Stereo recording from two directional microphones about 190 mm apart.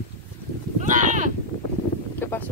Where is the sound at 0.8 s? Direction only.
40° right (ahead or behind).